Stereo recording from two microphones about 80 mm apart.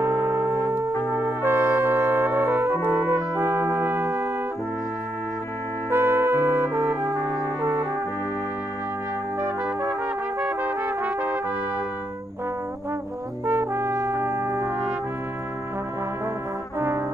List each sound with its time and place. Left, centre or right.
0.0 s music: right
1.4 s brass instrument: right
5.9 s brass instrument: right
10.4 s brass instrument: right
13.5 s brass instrument: right